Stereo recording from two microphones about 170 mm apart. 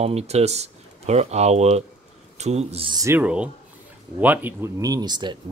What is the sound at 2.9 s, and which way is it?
Speech, 20° right (ahead or behind).